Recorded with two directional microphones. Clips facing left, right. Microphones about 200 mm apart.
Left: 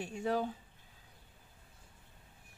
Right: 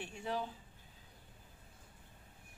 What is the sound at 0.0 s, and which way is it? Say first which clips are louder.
Speech: left 6 dB; 45° left (ahead or behind).